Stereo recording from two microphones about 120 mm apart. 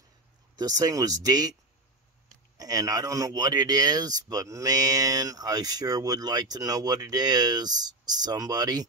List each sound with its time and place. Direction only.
0.6 s speech: 30° right (ahead or behind)
2.5 s speech: 30° right (ahead or behind)